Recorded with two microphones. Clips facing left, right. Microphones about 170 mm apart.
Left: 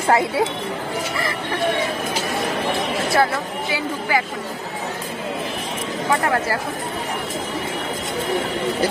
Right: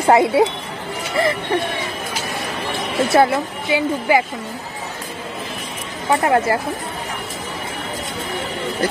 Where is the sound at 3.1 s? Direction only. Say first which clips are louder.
Right 5 dB; 20° right (ahead or behind).